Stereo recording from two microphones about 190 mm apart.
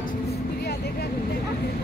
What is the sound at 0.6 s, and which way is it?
Speech, 55° left (ahead or behind).